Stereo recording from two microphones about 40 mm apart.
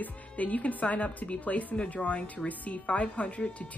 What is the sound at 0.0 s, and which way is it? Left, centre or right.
Speech, left.